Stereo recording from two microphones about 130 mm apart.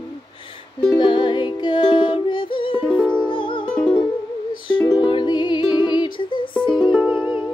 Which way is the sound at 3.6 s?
10° left (ahead or behind).